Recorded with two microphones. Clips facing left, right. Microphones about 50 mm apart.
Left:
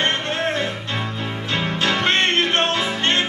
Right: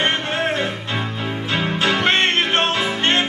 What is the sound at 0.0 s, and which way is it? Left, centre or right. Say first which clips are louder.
Music: right 1 dB; centre.